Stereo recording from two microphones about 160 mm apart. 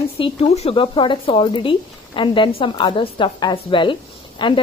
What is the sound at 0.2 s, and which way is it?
A woman's voice, 40° left (ahead or behind).